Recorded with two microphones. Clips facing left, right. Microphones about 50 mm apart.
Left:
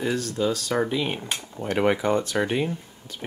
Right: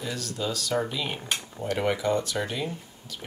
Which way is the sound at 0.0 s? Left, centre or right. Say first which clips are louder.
Left 7 dB; left.